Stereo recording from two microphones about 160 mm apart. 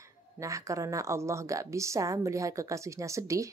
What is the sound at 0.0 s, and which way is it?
A woman's voice, 20° right (ahead or behind).